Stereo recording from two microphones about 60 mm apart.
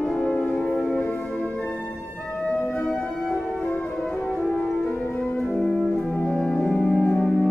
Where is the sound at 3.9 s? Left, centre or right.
Centre.